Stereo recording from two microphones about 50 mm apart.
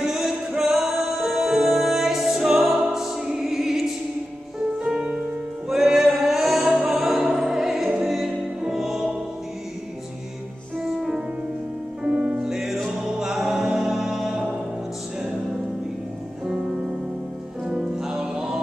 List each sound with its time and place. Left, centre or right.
0.0 s music: centre
5.7 s music: centre
12.0 s music: right
12.4 s music: centre
17.6 s music: centre